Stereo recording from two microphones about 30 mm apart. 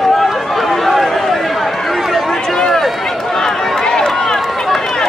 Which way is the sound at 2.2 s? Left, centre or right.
Centre.